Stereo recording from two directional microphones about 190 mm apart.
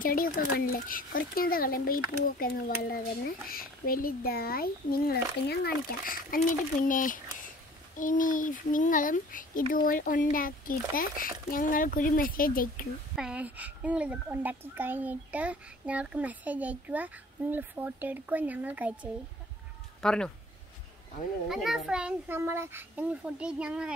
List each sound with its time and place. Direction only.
0.0 s speech: 50° left (ahead or behind)
13.1 s speech: 5° right (ahead or behind)
20.0 s speech: 5° left (ahead or behind)
21.5 s a child's voice: centre (ahead or behind)